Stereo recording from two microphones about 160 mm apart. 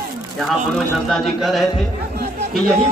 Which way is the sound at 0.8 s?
Centre (ahead or behind).